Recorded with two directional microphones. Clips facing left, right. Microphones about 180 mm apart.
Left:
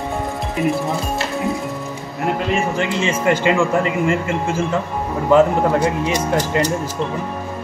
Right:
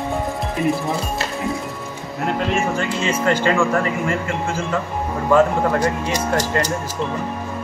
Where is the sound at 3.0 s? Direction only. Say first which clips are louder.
Left 1 dB; 15° left (ahead or behind).